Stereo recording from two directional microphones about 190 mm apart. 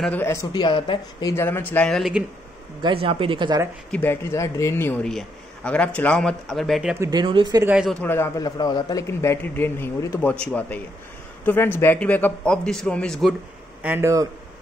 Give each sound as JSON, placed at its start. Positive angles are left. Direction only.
{"t": 0.0, "sound": "speech", "side_deg": 10}
{"t": 1.3, "sound": "a man's voice", "side_deg": 10}
{"t": 2.8, "sound": "speech", "side_deg": -30}
{"t": 3.9, "sound": "a man's voice", "side_deg": 10}
{"t": 7.0, "sound": "speech", "side_deg": -20}
{"t": 7.7, "sound": "speech", "side_deg": -5}
{"t": 8.0, "sound": "a man's voice", "side_deg": 15}
{"t": 13.8, "sound": "speech", "side_deg": -10}